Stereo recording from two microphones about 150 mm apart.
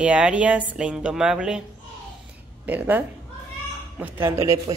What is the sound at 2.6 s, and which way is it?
A woman's voice, 10° right (ahead or behind).